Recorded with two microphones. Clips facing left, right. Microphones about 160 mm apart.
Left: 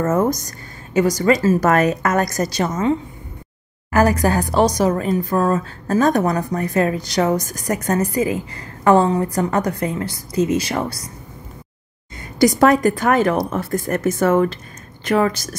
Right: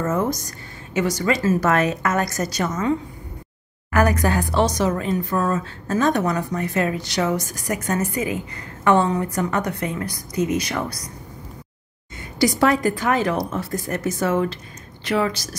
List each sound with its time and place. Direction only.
0.0 s a woman's voice: 40° left (ahead or behind)
12.4 s a woman's voice: 45° left (ahead or behind)